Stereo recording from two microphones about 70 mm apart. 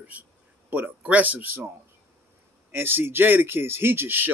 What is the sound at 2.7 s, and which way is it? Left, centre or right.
A man's voice, right.